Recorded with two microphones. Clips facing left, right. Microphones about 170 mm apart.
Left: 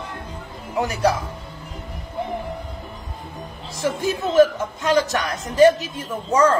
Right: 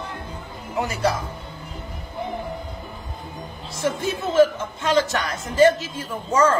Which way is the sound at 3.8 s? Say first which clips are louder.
Left 2 dB; 15° left (ahead or behind).